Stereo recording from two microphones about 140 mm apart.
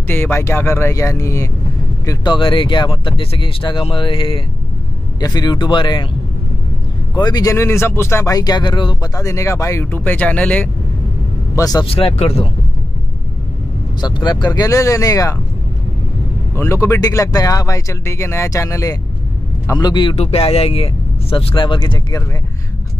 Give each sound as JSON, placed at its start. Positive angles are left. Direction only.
{"t": 0.1, "sound": "speech", "side_deg": 15}
{"t": 2.0, "sound": "speech", "side_deg": 35}
{"t": 7.2, "sound": "speech", "side_deg": 30}
{"t": 11.5, "sound": "speech", "side_deg": 25}
{"t": 11.8, "sound": "speech", "side_deg": 45}
{"t": 14.0, "sound": "speech", "side_deg": 30}
{"t": 16.5, "sound": "speech", "side_deg": 20}
{"t": 19.8, "sound": "speech", "side_deg": 35}
{"t": 20.2, "sound": "speech", "side_deg": 45}